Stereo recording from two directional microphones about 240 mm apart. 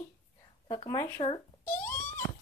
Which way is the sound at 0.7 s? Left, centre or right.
Centre.